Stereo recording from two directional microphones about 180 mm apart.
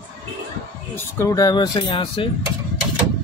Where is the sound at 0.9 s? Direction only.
15° left (ahead or behind).